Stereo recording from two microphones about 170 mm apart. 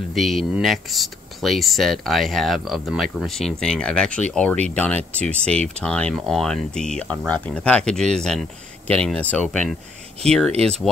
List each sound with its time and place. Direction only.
0.1 s speech: centre (ahead or behind)
10.5 s speech: 35° right (ahead or behind)